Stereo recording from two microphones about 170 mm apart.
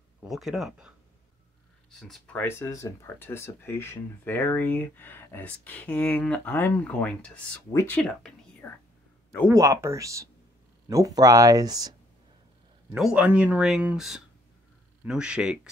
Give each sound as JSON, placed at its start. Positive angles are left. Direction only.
{"t": 0.2, "sound": "speech", "side_deg": 0}
{"t": 9.5, "sound": "speech", "side_deg": -20}
{"t": 12.9, "sound": "speech", "side_deg": -5}